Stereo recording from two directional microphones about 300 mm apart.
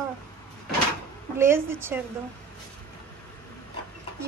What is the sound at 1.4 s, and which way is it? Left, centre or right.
Speech, centre.